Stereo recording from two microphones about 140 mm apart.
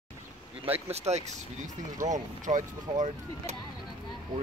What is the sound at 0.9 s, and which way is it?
Speech, 50° right (ahead or behind).